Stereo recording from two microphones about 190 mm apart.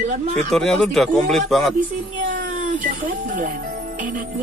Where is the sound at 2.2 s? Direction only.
45° right (ahead or behind).